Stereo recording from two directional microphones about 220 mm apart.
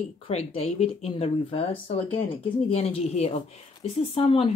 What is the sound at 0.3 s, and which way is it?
Speech, 30° left (ahead or behind).